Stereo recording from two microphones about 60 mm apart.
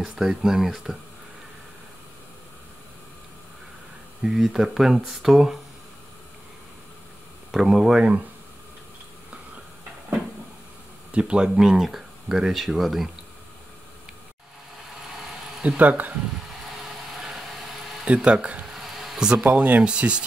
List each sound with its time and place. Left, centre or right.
0.2 s speech: centre
4.2 s speech: centre
7.5 s speech: centre
11.1 s speech: centre
15.8 s speech: right
17.1 s vehicle: centre
18.0 s speech: centre
18.7 s a sound: centre
19.4 s speech: right